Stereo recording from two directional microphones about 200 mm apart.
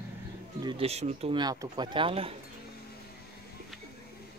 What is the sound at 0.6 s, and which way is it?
Speech, 25° right (ahead or behind).